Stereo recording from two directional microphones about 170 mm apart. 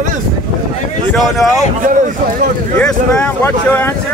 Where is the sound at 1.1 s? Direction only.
Centre (ahead or behind).